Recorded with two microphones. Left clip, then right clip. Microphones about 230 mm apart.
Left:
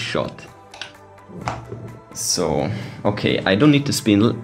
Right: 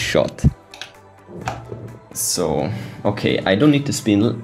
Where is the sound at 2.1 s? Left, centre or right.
Centre.